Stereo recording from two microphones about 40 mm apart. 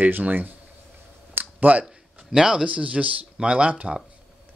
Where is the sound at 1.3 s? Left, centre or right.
Right.